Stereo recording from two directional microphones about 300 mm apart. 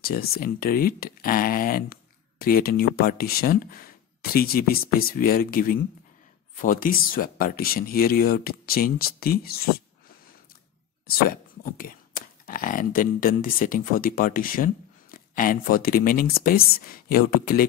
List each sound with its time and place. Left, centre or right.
0.0 s speech: left
11.1 s speech: left